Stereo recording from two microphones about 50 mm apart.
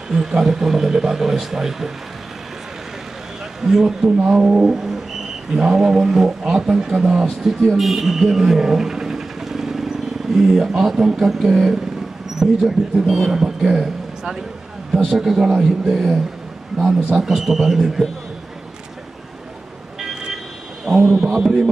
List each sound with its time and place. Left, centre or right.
0.1 s a man's voice: centre
3.6 s a man's voice: centre
4.6 s a sound: centre
5.5 s a man's voice: centre
7.4 s speech: centre
13.3 s a man's voice: centre
17.2 s speech: centre
20.9 s a sound: centre
21.3 s a man's voice: centre